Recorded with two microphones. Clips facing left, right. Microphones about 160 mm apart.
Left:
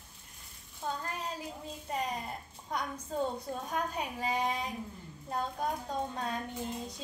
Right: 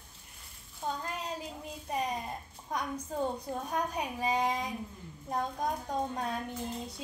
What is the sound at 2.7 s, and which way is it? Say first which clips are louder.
Speech: even; 10° right (ahead or behind).